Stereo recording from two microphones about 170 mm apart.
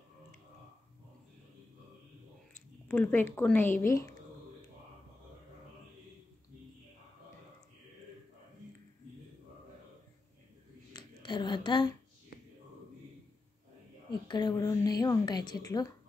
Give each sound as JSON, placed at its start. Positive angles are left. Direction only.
{"t": 2.9, "sound": "speech", "side_deg": 10}
{"t": 10.9, "sound": "a sound", "side_deg": 25}
{"t": 14.2, "sound": "a woman's voice", "side_deg": 25}